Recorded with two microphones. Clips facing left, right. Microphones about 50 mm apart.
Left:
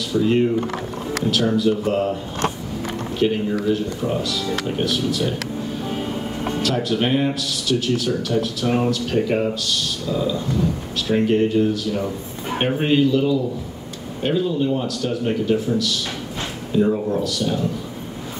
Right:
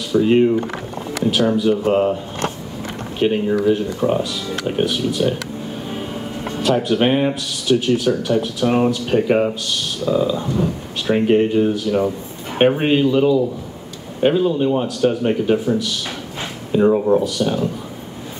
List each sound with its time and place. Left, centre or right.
0.1 s speech: right
1.3 s speech: centre
3.2 s speech: right
6.6 s speech: centre
16.7 s speech: right
17.1 s speech: right